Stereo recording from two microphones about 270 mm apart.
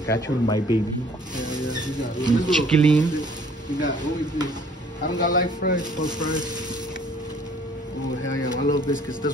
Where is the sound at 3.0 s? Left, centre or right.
Centre.